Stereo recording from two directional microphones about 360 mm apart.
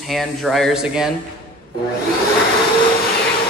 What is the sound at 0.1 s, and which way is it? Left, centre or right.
Speech, centre.